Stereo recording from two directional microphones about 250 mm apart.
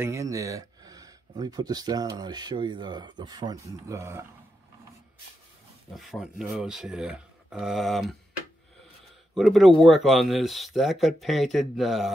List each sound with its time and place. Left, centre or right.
0.0 s speech: centre
5.9 s speech: centre
9.3 s speech: centre